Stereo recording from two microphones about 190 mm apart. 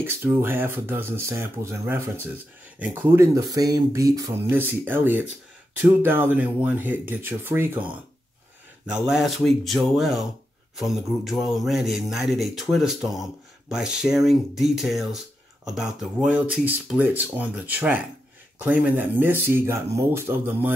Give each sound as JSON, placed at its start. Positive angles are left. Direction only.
{"t": 0.0, "sound": "speech", "side_deg": -10}
{"t": 8.8, "sound": "mantra", "side_deg": -5}
{"t": 15.7, "sound": "speech", "side_deg": 0}